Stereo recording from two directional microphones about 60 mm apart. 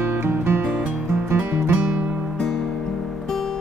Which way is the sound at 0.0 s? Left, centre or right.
Right.